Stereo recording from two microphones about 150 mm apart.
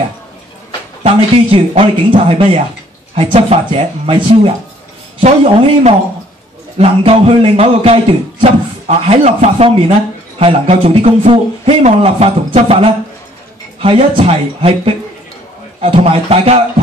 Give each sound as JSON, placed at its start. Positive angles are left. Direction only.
{"t": 1.0, "sound": "a man's voice", "side_deg": -40}